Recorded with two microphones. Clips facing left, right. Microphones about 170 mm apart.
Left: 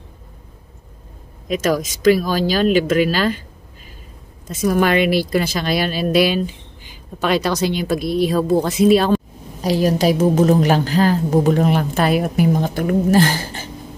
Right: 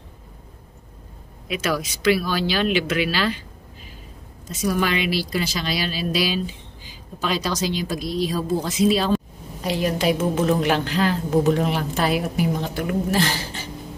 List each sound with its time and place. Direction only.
1.5 s a woman's voice: 45° left (ahead or behind)
4.5 s a woman's voice: 50° left (ahead or behind)
9.6 s a woman's voice: 40° left (ahead or behind)